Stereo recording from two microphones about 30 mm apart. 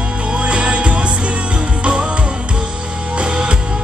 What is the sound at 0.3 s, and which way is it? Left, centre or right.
Music, right.